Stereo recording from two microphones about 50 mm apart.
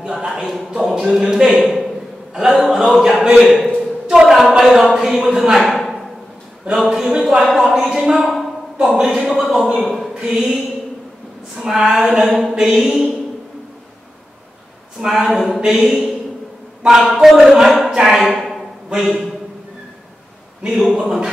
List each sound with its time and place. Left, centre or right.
0.1 s a man's voice: centre
3.4 s a sound: centre
4.3 s a man's voice: centre
9.8 s a sound: centre
11.5 s a man's voice: centre
15.0 s speech: centre
20.8 s speech: centre